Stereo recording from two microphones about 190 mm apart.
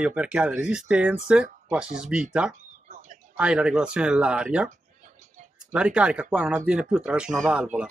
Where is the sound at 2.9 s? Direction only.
40° right (ahead or behind).